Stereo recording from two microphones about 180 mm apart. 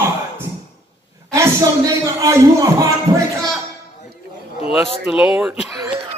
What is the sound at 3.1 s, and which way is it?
Speech, 15° right (ahead or behind).